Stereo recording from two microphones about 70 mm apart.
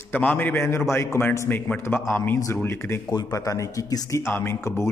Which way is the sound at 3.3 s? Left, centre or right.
Left.